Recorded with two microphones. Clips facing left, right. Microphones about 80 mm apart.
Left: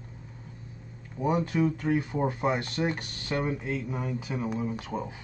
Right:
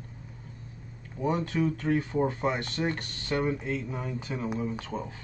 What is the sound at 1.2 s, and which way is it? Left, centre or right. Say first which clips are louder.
Speech: left 2 dB; centre.